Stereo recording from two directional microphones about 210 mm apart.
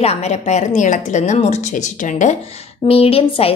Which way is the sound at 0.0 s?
30° left (ahead or behind).